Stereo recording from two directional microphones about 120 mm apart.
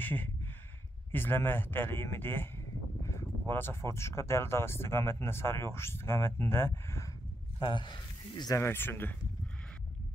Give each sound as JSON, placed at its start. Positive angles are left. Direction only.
{"t": 0.0, "sound": "a sound", "side_deg": 15}
{"t": 1.1, "sound": "speech", "side_deg": 15}
{"t": 7.6, "sound": "speech", "side_deg": 40}
{"t": 8.5, "sound": "speech", "side_deg": 20}